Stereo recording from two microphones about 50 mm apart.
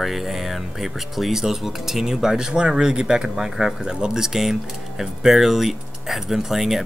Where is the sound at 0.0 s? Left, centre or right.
Centre.